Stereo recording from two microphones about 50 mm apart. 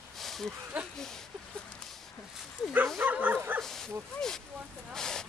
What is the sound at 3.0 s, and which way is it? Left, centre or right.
Bow-wow, right.